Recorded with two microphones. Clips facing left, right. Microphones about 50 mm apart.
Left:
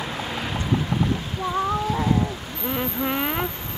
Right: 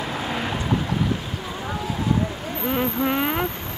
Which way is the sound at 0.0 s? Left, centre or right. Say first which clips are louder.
Right 2 dB; centre.